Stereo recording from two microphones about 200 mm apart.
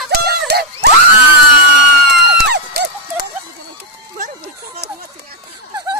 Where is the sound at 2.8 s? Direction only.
55° right (ahead or behind).